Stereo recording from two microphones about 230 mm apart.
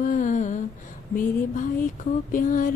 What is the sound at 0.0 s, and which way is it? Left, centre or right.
Humming, left.